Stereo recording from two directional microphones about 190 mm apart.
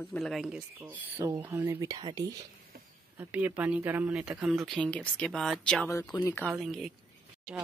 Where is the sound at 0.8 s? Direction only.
15° right (ahead or behind).